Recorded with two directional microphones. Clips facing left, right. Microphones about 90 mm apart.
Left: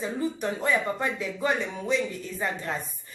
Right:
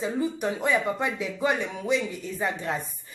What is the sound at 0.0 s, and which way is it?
Speech, 15° right (ahead or behind).